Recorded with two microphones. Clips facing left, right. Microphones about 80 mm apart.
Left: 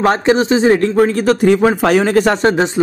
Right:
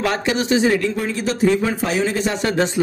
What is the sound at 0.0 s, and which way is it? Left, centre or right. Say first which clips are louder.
Speech: left 8 dB; left.